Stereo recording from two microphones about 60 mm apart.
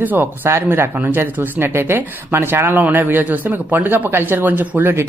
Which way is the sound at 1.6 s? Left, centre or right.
Right.